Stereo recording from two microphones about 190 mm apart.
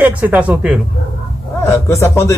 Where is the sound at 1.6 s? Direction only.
15° left (ahead or behind).